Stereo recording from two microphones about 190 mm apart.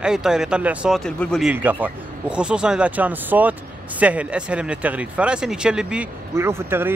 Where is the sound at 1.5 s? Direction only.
10° right (ahead or behind).